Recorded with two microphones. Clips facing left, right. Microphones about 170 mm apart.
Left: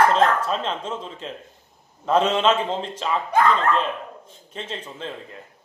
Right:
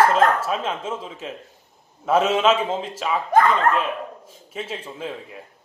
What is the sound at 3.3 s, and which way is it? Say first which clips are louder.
Speech: right 2 dB; 50° right (ahead or behind).